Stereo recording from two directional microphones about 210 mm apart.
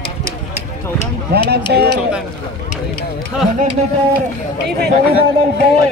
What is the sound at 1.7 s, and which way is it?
Speech, 50° right (ahead or behind).